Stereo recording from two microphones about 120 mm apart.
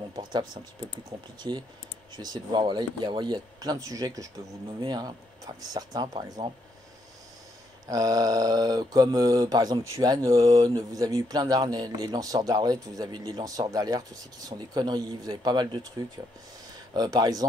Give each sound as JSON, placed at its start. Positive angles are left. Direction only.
{"t": 0.1, "sound": "speech", "side_deg": -40}
{"t": 1.5, "sound": "mantra", "side_deg": -40}
{"t": 7.9, "sound": "mantra", "side_deg": -30}
{"t": 16.9, "sound": "mantra", "side_deg": -30}